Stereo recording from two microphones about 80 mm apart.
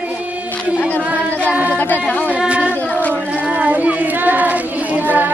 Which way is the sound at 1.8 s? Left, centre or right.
Left.